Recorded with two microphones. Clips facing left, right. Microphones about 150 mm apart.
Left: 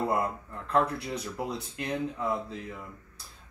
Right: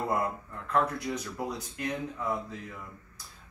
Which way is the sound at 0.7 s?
30° left (ahead or behind).